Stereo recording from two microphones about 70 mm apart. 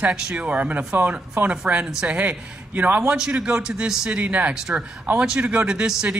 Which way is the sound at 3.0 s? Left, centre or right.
Centre.